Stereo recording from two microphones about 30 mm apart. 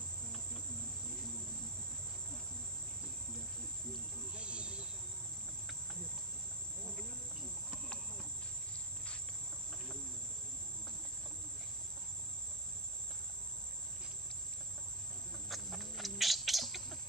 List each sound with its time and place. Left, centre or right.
4.4 s cricket: right
15.5 s bird: centre